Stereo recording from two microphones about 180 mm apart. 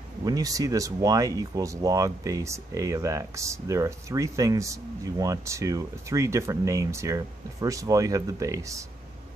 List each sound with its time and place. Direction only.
0.2 s speech: 20° right (ahead or behind)